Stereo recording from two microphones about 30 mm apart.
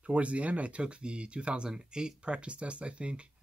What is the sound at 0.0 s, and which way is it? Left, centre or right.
Speech, right.